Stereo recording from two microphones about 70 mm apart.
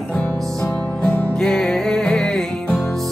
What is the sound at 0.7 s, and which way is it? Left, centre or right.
Music, left.